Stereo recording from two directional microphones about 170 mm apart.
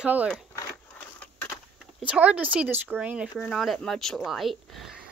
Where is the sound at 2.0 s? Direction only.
10° right (ahead or behind).